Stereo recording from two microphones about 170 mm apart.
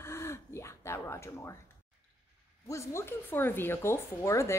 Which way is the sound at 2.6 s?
15° left (ahead or behind).